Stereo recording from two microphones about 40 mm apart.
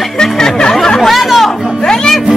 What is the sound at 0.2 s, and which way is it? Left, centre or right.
Music, centre.